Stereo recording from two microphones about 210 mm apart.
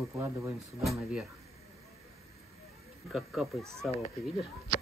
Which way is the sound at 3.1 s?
Centre (ahead or behind).